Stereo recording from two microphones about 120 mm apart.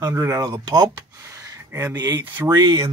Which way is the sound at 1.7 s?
20° right (ahead or behind).